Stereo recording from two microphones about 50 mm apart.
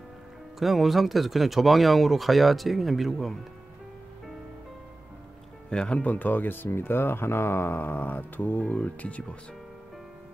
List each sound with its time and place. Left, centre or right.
0.6 s speech: centre
5.7 s speech: left
8.6 s speech: left